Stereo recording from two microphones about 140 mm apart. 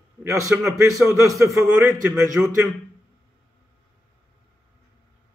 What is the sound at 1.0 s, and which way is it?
A man's voice, 20° right (ahead or behind).